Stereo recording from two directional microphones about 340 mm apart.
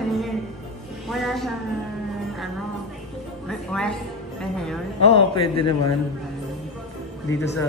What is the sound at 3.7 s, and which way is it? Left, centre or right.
Speech, centre.